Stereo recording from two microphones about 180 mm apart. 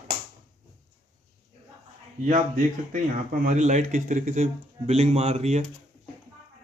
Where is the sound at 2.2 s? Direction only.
45° right (ahead or behind).